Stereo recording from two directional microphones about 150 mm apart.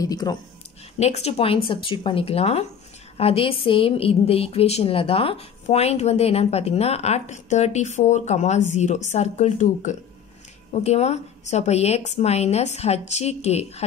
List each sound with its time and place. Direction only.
0.0 s speech: 25° left (ahead or behind)
0.9 s a woman's voice: 45° left (ahead or behind)